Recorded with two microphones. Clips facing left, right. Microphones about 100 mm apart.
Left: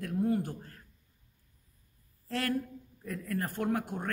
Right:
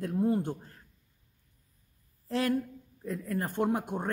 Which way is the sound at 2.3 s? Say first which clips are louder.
Right 4 dB; 20° right (ahead or behind).